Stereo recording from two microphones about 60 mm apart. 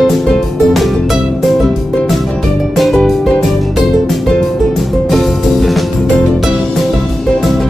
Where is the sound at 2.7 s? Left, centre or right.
Centre.